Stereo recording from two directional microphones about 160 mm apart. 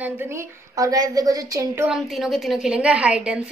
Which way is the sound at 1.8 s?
Centre (ahead or behind).